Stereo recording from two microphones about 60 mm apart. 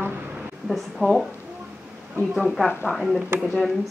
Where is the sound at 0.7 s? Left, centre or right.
Centre.